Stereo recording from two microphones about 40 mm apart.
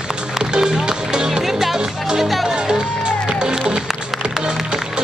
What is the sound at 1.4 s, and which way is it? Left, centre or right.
Music, centre.